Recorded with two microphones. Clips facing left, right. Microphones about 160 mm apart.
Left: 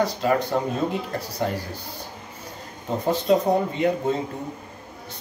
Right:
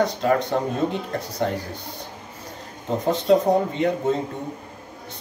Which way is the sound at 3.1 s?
5° left (ahead or behind).